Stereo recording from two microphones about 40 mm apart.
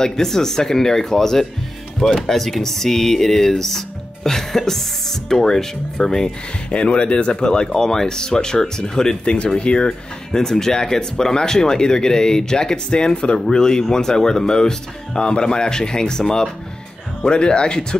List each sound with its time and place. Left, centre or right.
0.0 s speech: centre
6.7 s speech: left
7.3 s speech: centre
9.2 s speech: left
10.4 s speech: centre